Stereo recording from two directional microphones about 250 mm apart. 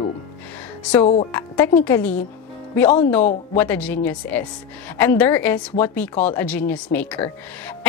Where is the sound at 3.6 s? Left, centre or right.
Centre.